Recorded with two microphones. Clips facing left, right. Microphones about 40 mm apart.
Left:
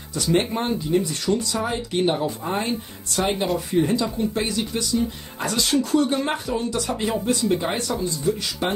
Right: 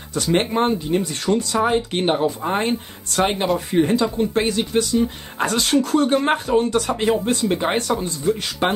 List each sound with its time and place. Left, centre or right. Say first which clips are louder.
0.1 s speech: right 2 dB; right